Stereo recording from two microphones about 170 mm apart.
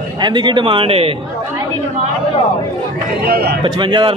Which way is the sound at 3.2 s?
65° right (ahead or behind).